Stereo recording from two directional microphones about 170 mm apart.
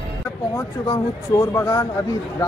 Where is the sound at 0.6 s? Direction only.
15° left (ahead or behind).